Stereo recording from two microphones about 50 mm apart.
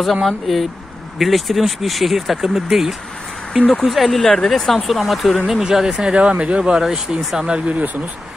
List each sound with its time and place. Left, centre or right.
0.0 s speech: centre
5.5 s speech: centre
6.8 s speech: centre
7.5 s speech: right